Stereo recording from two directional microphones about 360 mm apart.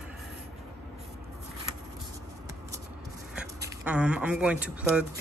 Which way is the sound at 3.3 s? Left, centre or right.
Centre.